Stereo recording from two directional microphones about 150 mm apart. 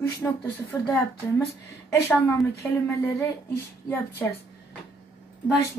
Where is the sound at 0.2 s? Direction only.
10° left (ahead or behind).